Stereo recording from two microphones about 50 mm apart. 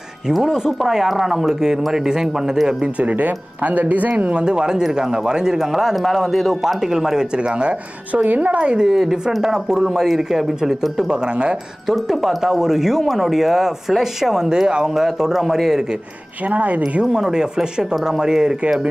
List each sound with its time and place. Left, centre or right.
0.3 s speech: centre
3.0 s speech: right; by 7.2 s centre
7.3 s speech: right
8.8 s speech: centre
11.1 s speech: right
11.9 s speech: centre
16.4 s speech: right
17.1 s speech: centre